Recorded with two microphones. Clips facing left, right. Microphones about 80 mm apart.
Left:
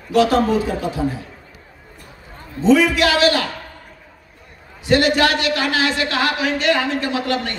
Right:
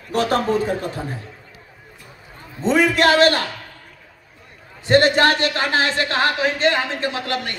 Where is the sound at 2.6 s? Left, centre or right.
Right.